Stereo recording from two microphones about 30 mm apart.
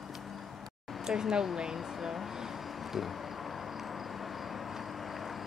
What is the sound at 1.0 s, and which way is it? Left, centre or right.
Speech, right.